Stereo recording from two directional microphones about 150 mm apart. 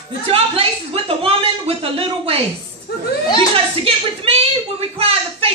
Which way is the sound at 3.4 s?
40° right (ahead or behind).